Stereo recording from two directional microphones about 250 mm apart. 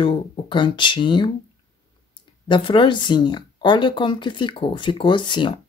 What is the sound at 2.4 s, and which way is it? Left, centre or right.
Speech, centre.